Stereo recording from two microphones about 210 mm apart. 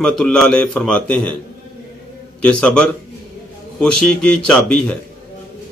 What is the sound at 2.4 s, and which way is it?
Speech, 5° left (ahead or behind).